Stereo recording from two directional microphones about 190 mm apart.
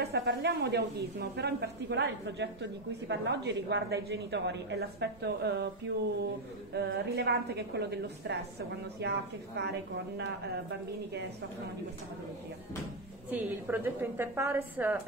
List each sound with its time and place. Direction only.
0.0 s a woman's voice: 55° right (ahead or behind)
6.7 s a woman's voice: 55° right (ahead or behind)
13.3 s a woman's voice: 10° right (ahead or behind)